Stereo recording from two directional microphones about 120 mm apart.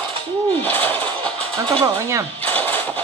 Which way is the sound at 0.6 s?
15° left (ahead or behind).